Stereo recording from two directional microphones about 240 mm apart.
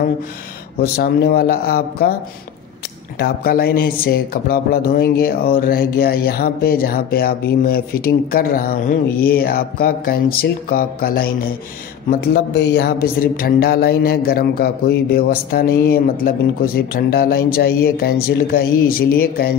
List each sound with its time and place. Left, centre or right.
0.7 s speech: left
3.2 s speech: left